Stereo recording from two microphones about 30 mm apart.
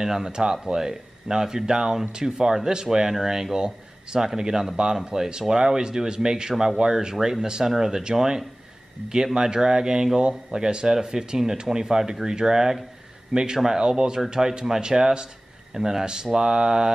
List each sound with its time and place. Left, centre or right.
0.0 s speech: right